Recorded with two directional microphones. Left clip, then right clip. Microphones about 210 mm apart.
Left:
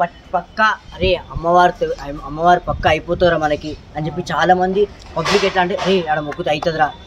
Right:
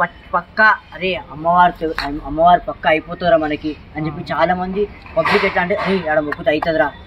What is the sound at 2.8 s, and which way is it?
Speech, 50° left (ahead or behind).